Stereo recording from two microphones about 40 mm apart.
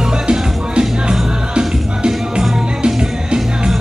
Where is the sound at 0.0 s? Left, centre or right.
Right.